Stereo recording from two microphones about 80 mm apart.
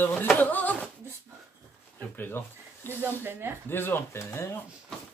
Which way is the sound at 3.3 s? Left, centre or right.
Right.